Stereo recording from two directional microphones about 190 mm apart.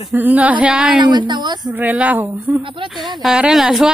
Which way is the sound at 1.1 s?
25° right (ahead or behind).